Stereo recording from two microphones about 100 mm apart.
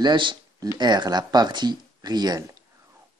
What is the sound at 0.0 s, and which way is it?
Speech, 55° right (ahead or behind).